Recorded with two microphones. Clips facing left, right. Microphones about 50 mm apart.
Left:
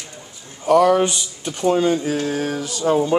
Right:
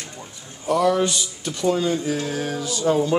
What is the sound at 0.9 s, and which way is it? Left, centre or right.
Speech, left.